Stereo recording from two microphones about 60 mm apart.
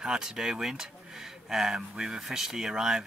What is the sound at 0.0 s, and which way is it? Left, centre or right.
Speech, centre.